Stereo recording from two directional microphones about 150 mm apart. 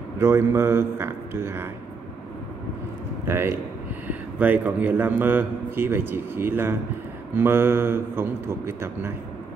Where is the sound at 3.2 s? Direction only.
15° right (ahead or behind).